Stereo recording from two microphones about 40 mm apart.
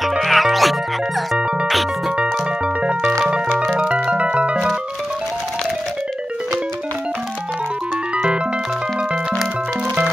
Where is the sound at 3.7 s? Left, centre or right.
Right.